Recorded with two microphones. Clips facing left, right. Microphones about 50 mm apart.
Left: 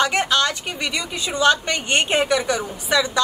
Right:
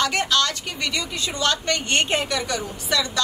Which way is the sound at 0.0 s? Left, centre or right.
Left.